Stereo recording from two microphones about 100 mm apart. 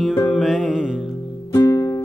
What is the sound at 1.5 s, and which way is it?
Music, 30° left (ahead or behind).